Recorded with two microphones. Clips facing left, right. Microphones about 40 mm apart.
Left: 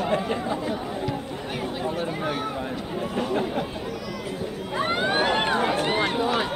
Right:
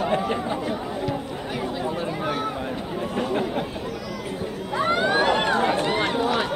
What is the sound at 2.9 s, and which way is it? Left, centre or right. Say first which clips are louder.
Chatter: even; centre.